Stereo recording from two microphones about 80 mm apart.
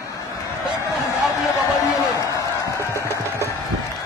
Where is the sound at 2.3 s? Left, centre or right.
Left.